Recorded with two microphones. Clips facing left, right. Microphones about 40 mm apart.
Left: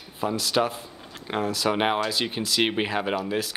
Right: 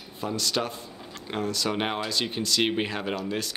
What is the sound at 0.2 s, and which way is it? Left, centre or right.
Speech, centre.